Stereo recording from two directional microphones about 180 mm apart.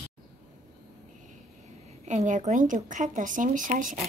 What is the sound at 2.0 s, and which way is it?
A woman's voice, 40° right (ahead or behind).